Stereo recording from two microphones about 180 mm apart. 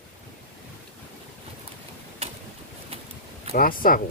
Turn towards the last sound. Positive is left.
turn(degrees=50)  # may be behind; listen again after turning